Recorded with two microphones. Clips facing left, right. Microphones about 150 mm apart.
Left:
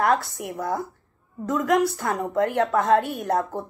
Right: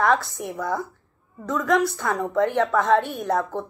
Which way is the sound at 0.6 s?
25° left (ahead or behind).